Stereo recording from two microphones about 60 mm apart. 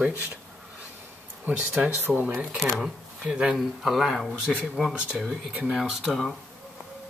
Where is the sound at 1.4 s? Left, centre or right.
Right.